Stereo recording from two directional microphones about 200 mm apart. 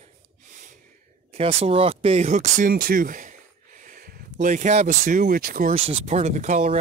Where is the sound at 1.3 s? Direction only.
30° right (ahead or behind); by 5.7 s 45° right (ahead or behind).